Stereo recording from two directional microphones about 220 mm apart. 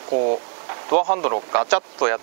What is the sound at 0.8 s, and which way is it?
Speech, 30° right (ahead or behind).